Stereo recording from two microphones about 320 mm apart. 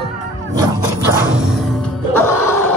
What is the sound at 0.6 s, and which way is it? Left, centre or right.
Music, centre.